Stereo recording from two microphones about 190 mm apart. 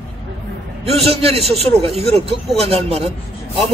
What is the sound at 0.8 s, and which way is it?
A man's voice, 30° right (ahead or behind).